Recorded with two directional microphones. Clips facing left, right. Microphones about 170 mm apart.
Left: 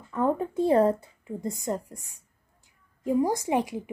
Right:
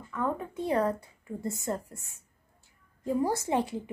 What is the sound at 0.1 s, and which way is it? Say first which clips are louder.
A woman's voice: left 6 dB; 30° left (ahead or behind).